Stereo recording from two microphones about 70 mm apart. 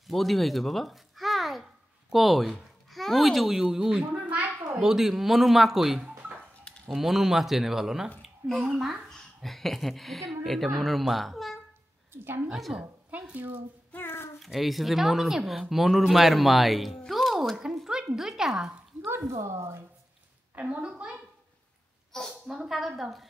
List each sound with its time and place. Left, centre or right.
0.0 s a sound: centre
3.7 s a woman's voice: centre
12.1 s a woman's voice: right
12.5 s speech: centre
13.3 s speech: right
13.9 s a sound: left
14.4 s speech: centre
17.0 s music: centre
17.7 s a sound: centre
18.1 s speech: centre
19.0 s speech: right
20.5 s a woman's voice: centre
22.1 s a woman's voice: centre
22.7 s speech: centre